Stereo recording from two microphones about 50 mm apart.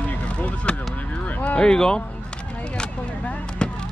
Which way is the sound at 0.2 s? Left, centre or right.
Left.